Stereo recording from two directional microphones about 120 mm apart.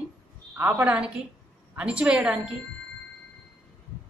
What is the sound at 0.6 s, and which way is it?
A woman's voice, 15° right (ahead or behind).